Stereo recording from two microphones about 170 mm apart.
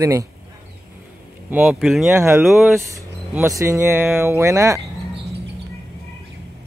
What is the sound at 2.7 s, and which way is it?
Speech, 15° right (ahead or behind).